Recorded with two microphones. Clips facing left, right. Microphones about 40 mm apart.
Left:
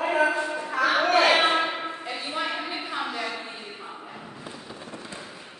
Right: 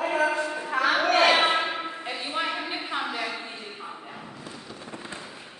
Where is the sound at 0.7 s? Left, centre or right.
Right.